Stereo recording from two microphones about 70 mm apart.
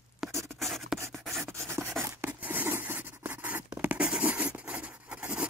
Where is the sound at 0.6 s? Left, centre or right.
Centre.